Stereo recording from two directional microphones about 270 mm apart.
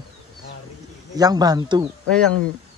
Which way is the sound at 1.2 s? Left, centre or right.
Centre.